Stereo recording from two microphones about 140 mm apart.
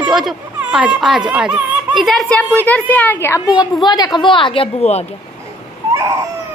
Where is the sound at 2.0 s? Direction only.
5° left (ahead or behind).